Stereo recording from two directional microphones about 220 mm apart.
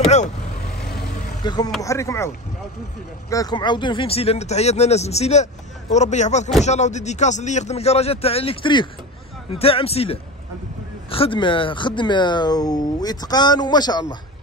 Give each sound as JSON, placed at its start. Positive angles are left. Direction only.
{"t": 1.4, "sound": "speech", "side_deg": 20}